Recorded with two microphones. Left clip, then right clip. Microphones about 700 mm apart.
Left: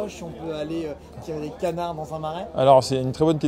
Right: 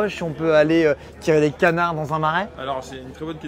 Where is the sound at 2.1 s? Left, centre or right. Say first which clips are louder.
Right 13 dB; right.